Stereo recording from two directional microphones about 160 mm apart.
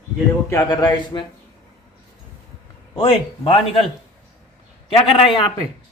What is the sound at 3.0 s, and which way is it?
Speech, 35° left (ahead or behind).